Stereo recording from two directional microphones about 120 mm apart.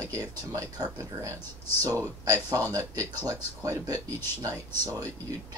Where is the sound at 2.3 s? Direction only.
30° right (ahead or behind).